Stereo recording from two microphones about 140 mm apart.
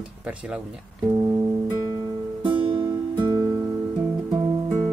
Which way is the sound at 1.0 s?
30° right (ahead or behind).